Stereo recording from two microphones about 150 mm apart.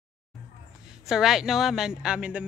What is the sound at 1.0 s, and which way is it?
A woman's voice, 5° right (ahead or behind).